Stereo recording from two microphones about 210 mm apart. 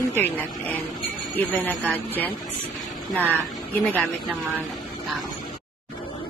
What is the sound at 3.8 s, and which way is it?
Speech, centre (ahead or behind).